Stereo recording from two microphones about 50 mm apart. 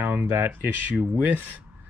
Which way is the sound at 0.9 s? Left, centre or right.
Right.